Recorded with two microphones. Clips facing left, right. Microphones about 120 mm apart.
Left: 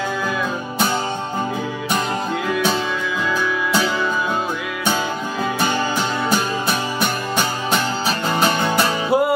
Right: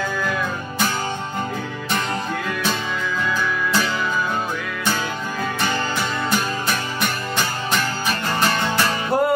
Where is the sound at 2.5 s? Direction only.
10° left (ahead or behind).